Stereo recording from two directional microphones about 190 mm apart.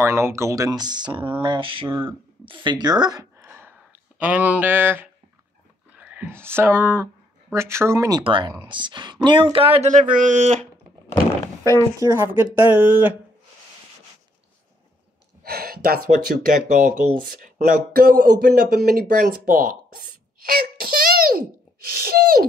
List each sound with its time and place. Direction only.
0.0 s speech: 15° right (ahead or behind)
8.2 s speech: 25° right (ahead or behind)
11.4 s speech: 15° left (ahead or behind)
12.0 s speech: 15° right (ahead or behind)
15.4 s speech: 55° right (ahead or behind)
21.8 s sneeze: 55° right (ahead or behind)